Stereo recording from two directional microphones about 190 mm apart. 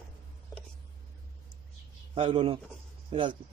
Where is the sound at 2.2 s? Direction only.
30° right (ahead or behind).